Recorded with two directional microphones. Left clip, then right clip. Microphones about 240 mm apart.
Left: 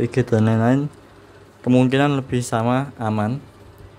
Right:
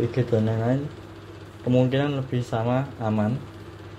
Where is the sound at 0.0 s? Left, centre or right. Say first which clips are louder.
Left 4 dB; left.